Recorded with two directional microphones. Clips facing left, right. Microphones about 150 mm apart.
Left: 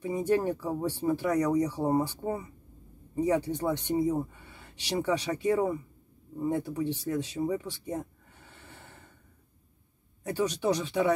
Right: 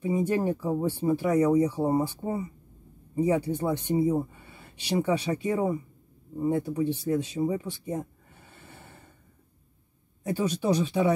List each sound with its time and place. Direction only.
0.0 s speech: 10° right (ahead or behind)
3.2 s speech: 10° right (ahead or behind)
10.3 s speech: 15° right (ahead or behind)